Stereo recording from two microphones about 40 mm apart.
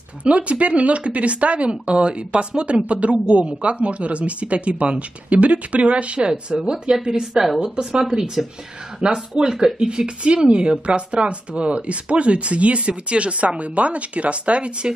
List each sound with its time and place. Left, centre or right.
0.2 s a woman's voice: right